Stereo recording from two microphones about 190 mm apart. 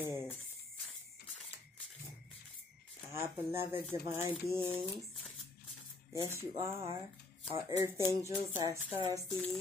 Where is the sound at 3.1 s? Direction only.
15° right (ahead or behind).